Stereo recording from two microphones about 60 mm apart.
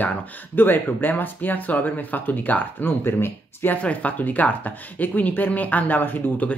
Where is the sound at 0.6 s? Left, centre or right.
Left.